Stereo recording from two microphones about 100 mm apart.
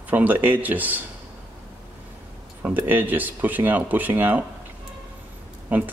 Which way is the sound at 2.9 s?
20° right (ahead or behind).